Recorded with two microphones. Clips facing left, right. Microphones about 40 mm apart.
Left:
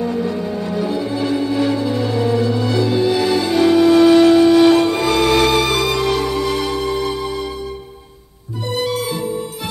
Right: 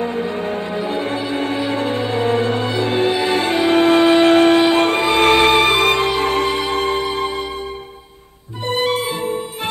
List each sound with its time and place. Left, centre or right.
0.0 s music: right
8.6 s music: right